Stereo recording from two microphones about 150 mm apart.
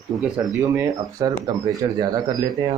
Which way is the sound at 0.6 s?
20° right (ahead or behind).